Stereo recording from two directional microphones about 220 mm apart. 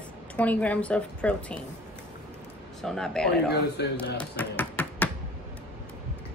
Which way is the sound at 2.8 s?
Centre (ahead or behind).